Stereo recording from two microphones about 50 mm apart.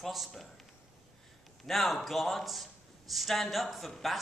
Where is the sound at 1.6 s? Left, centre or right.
Centre.